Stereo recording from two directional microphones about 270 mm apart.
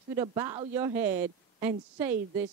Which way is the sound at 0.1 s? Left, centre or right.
Centre.